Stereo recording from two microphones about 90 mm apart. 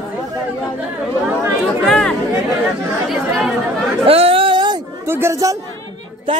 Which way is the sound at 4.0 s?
90° right.